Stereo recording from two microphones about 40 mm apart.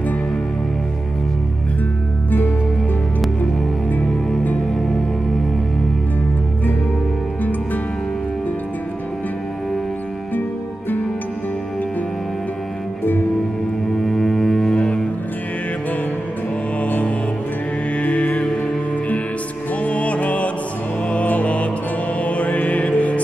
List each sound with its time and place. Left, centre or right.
13.9 s double bass: centre
16.8 s music: left
19.7 s music: left